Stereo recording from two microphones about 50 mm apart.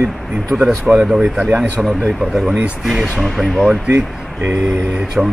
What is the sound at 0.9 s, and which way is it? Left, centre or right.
Speech, right.